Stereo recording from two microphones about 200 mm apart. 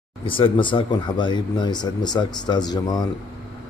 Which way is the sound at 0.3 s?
25° left (ahead or behind).